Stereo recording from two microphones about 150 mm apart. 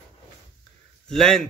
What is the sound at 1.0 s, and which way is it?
Speech, 5° left (ahead or behind).